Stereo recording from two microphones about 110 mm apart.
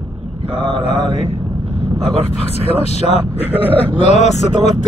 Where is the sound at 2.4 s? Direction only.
70° left (ahead or behind).